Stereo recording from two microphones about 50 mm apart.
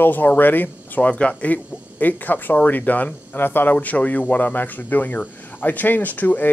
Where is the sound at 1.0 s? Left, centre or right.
Left.